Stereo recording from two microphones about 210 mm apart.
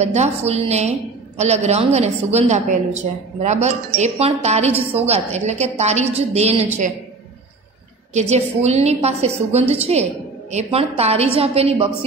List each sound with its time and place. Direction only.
0.0 s a woman's voice: 30° right (ahead or behind)
8.1 s a woman's voice: 30° right (ahead or behind)